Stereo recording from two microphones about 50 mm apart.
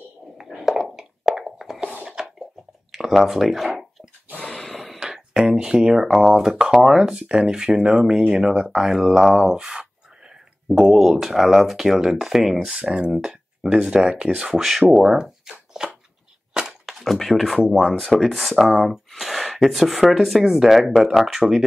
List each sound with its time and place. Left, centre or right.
0.4 s a sound: centre
2.9 s speech: centre
4.5 s snort: centre
5.0 s a sound: centre
5.6 s speech: centre
12.8 s speech: centre
15.0 s shuffling cards: centre
16.5 s a sound: centre
17.0 s speech: centre
18.2 s speech: centre